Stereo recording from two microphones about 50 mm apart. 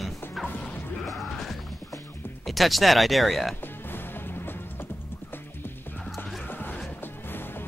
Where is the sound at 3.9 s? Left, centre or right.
Left.